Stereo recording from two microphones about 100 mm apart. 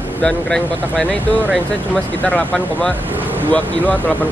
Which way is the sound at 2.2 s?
10° left (ahead or behind).